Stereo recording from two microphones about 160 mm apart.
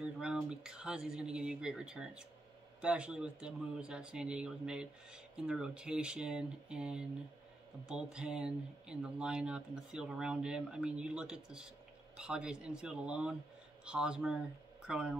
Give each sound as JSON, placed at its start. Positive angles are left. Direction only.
{"t": 0.0, "sound": "speech", "side_deg": -5}